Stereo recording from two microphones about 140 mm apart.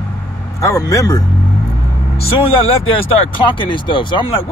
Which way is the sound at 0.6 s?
25° left (ahead or behind).